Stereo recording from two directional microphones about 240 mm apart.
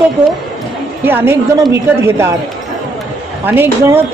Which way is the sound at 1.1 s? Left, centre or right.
Centre.